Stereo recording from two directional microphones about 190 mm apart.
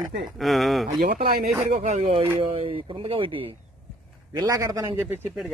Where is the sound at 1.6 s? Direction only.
40° right (ahead or behind).